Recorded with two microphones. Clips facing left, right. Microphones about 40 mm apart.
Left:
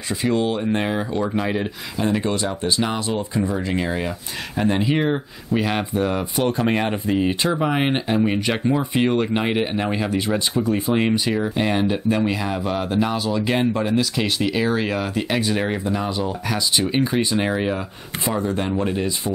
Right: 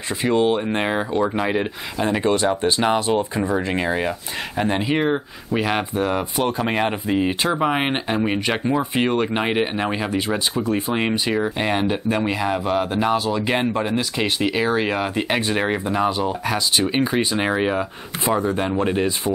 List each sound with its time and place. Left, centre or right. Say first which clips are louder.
0.1 s speech: right 2 dB; right
1.2 s speech: right 2 dB; centre
2.3 s speech: right 3 dB; right
3.7 s speech: right 2 dB; centre